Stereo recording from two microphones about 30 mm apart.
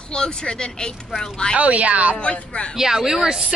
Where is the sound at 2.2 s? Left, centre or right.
Left.